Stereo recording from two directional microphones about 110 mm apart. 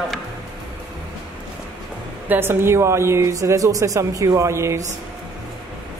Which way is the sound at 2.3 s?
20° right (ahead or behind).